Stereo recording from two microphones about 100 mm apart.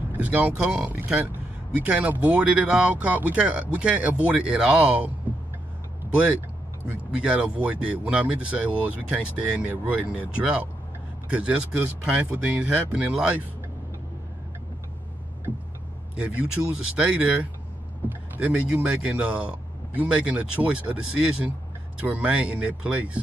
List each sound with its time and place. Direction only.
0.2 s speech: 15° right (ahead or behind)
16.2 s speech: 10° right (ahead or behind)